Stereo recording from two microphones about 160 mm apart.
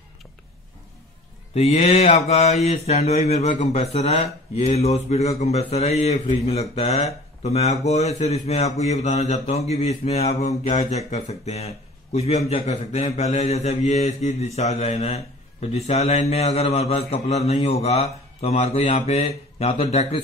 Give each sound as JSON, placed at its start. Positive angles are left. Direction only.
{"t": 1.5, "sound": "speech", "side_deg": 40}